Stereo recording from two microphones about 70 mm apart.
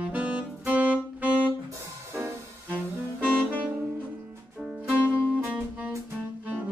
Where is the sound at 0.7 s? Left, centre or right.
Right.